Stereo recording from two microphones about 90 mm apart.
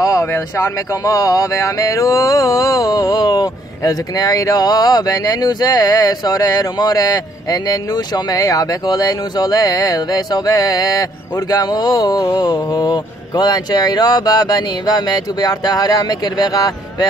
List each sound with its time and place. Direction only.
0.0 s speech: 35° left (ahead or behind)